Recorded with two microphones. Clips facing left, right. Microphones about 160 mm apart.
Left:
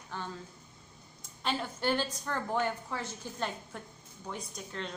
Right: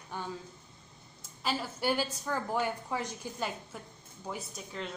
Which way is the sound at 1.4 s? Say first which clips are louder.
Even; 5° right (ahead or behind).